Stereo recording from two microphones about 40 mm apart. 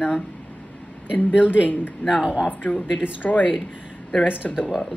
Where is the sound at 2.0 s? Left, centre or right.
Left.